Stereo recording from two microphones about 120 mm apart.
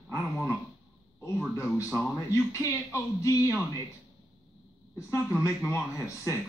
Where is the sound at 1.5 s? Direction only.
25° left (ahead or behind).